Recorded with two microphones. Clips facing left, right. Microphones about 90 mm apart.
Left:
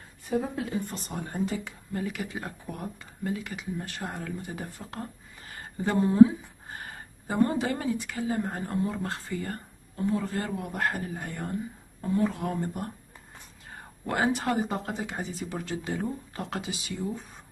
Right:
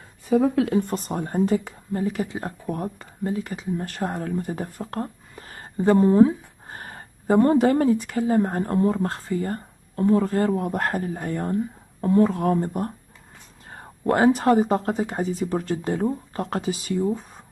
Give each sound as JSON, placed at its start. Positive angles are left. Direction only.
{"t": 0.6, "sound": "a woman's voice", "side_deg": -65}